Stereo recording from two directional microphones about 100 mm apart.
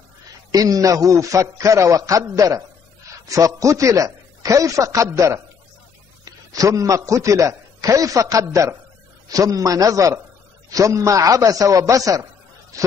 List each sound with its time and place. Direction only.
0.5 s a man's voice: 35° right (ahead or behind)